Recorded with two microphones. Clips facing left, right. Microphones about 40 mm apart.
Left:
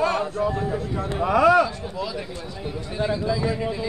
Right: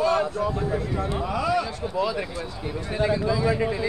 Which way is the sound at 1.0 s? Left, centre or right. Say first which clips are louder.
Left 7 dB; left.